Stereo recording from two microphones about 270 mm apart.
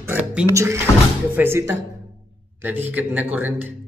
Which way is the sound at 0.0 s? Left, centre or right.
Centre.